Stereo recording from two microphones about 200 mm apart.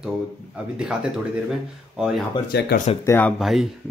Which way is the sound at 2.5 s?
55° left (ahead or behind).